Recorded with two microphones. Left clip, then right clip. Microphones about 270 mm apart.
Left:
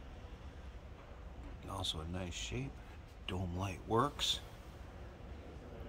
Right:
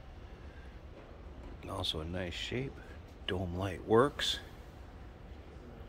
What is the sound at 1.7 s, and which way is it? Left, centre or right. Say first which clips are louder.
Speech: right 4 dB; centre.